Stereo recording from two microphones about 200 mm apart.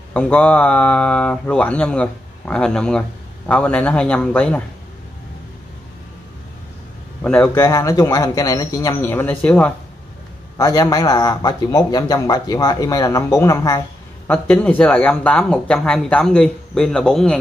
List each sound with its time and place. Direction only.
0.1 s speech: 5° left (ahead or behind)
7.2 s a man's voice: 5° left (ahead or behind)
10.6 s speech: 20° left (ahead or behind); by 17.4 s 5° left (ahead or behind)